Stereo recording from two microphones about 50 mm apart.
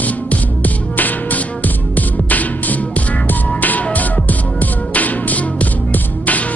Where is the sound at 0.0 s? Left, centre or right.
Left.